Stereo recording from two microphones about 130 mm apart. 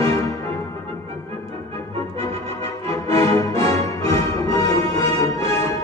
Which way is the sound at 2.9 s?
25° left (ahead or behind).